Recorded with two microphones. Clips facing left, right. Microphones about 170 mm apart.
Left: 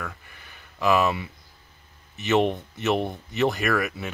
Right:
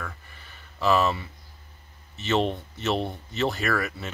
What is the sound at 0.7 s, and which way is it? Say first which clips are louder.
Speech: left 1 dB; 15° left (ahead or behind).